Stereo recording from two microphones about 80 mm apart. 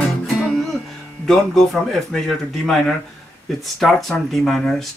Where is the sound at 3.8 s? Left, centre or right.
Centre.